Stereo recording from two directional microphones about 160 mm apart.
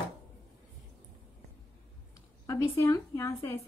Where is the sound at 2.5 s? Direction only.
20° left (ahead or behind).